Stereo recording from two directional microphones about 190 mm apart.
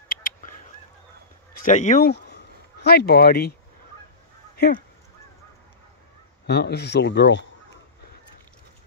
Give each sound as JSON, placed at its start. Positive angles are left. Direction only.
{"t": 0.1, "sound": "goose", "side_deg": 45}
{"t": 1.5, "sound": "speech", "side_deg": 40}
{"t": 2.0, "sound": "speech", "side_deg": 60}
{"t": 6.4, "sound": "speech", "side_deg": 60}